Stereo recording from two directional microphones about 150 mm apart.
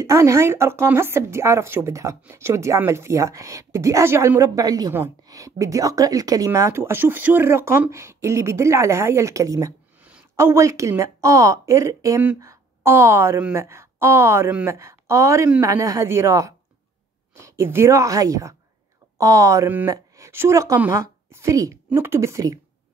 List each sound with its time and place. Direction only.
0.0 s a woman's voice: 20° right (ahead or behind)
12.2 s a woman's voice: 10° right (ahead or behind)